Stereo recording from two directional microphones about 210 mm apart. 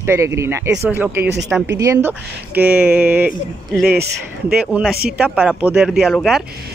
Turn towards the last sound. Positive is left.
turn(degrees=0)  # may be behind; listen again after turning